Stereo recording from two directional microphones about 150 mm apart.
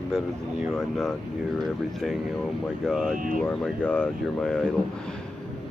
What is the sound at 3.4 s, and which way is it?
Speech, 5° left (ahead or behind).